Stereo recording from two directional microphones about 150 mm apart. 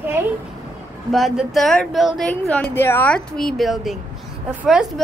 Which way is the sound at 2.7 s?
15° left (ahead or behind).